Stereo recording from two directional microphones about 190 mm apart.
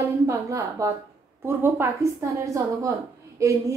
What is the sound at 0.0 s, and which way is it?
A woman's voice, 15° right (ahead or behind).